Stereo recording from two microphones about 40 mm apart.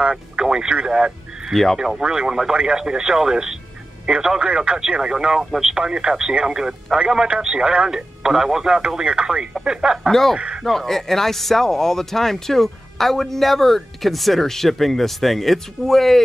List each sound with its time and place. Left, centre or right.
0.0 s speech: centre
1.5 s speech: centre
1.8 s speech: centre
10.6 s speech: centre